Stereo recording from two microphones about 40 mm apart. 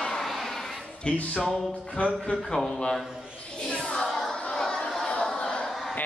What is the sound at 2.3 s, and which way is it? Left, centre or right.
Speech, centre.